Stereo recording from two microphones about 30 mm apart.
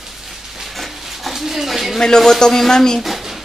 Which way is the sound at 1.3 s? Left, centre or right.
Centre.